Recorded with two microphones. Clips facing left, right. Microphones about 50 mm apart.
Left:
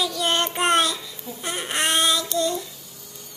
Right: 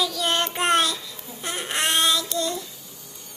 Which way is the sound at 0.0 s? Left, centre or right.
Centre.